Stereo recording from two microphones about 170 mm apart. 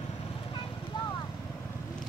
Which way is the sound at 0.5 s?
30° left (ahead or behind).